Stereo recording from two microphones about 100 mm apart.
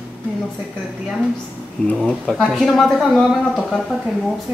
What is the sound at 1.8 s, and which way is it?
Speech, 5° left (ahead or behind).